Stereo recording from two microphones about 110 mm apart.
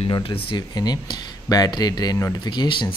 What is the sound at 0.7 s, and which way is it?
Speech, 40° left (ahead or behind).